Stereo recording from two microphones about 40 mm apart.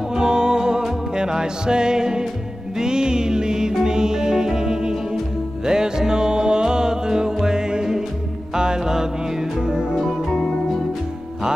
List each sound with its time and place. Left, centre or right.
0.1 s music: centre
10.3 s music: centre